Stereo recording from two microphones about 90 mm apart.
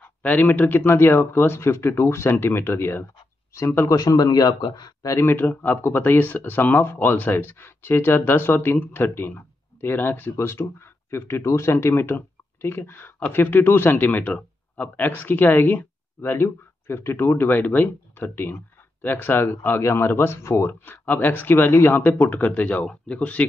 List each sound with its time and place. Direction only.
0.0 s speech: 20° left (ahead or behind)
4.0 s speech: 45° left (ahead or behind)
5.0 s speech: 30° left (ahead or behind)